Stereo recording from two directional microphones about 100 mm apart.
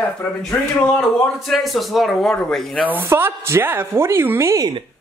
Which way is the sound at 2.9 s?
25° right (ahead or behind).